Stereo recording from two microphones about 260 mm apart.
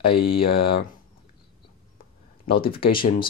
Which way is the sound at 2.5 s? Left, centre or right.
Left.